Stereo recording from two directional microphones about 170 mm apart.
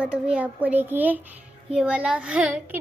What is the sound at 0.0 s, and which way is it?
A child's voice, 5° right (ahead or behind).